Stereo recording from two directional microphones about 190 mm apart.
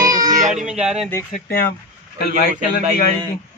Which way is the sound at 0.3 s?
40° right (ahead or behind).